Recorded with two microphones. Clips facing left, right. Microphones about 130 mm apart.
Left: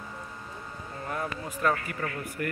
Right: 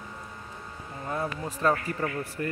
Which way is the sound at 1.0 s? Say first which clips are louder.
Right 2 dB; 15° right (ahead or behind).